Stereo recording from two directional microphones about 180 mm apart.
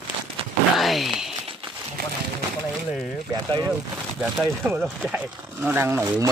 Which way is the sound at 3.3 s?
20° right (ahead or behind).